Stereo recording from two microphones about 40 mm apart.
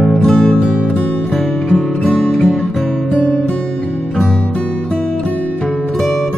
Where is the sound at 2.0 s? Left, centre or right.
Left.